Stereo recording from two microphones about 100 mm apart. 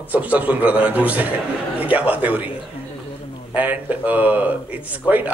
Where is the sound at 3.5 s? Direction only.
15° right (ahead or behind).